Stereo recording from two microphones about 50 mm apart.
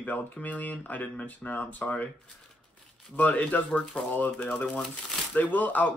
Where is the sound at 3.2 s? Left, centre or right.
Left.